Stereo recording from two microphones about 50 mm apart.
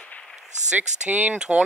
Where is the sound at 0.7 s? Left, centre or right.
Right.